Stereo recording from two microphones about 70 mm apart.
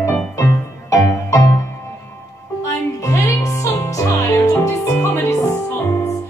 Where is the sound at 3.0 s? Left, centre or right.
Left.